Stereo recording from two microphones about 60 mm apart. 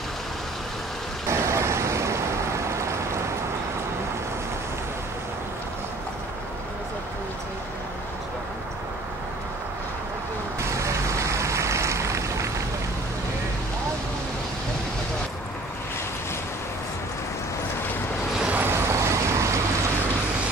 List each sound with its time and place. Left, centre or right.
1.3 s vehicle: right
2.8 s a sound: right
10.6 s vehicle: right
18.5 s vehicle: right
18.9 s vehicle: right